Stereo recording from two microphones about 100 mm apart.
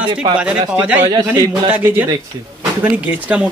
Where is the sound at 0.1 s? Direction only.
55° right (ahead or behind).